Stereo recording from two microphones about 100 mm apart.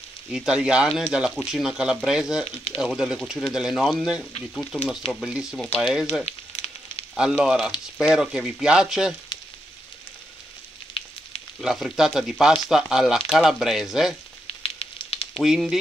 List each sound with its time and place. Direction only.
0.3 s speech: 5° right (ahead or behind)
6.2 s frying: 85° left
7.2 s speech: 5° right (ahead or behind)
10.9 s a sound: 70° left (ahead or behind)
11.6 s speech: centre (ahead or behind)
14.6 s sizzle: 75° left (ahead or behind)
15.3 s speech: centre (ahead or behind)